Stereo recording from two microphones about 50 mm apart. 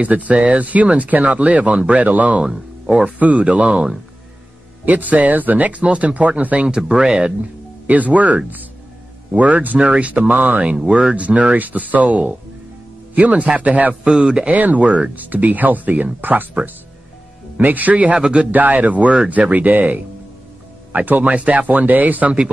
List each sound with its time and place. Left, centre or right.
0.0 s speech: right
4.8 s speech: right
7.8 s speech: right
10.9 s speech: right
14.1 s speech: centre
14.5 s speech: right
17.6 s speech: right
18.5 s speech: right
19.1 s speech: right